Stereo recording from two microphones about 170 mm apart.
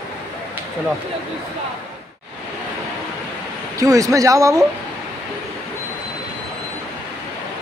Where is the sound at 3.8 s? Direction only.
20° right (ahead or behind).